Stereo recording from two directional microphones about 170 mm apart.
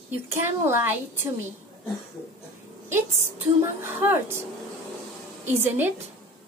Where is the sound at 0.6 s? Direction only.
15° right (ahead or behind).